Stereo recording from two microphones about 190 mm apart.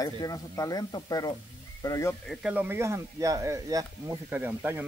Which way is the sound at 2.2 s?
5° right (ahead or behind).